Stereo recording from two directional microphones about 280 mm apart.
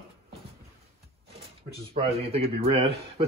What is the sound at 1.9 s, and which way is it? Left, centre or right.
Speech, right.